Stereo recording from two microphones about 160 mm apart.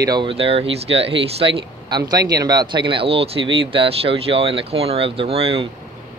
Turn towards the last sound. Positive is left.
turn(degrees=-35)  # may be behind; listen again after turning